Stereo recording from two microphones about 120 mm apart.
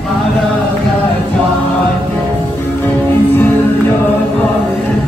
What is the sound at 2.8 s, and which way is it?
Music, 15° left (ahead or behind).